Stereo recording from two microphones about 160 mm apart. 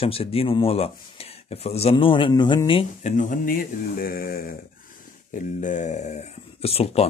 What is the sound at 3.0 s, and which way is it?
Speech, 50° left (ahead or behind).